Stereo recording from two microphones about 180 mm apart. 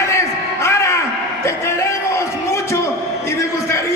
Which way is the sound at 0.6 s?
15° left (ahead or behind).